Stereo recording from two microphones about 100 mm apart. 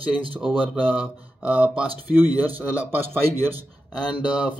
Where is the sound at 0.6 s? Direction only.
15° right (ahead or behind).